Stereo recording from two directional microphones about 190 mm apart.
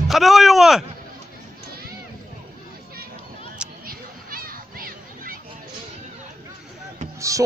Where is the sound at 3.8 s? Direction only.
50° right (ahead or behind).